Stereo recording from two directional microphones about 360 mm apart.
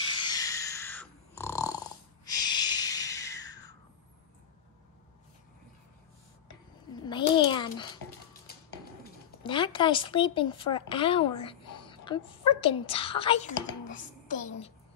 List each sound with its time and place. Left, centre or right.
0.2 s dog: centre
2.2 s snort: centre
6.9 s a sound: centre
9.4 s a woman's voice: centre